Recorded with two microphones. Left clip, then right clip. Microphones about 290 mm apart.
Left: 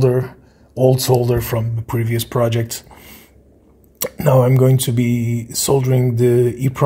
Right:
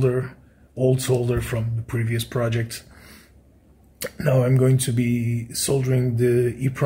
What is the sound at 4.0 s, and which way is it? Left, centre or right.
Speech, centre.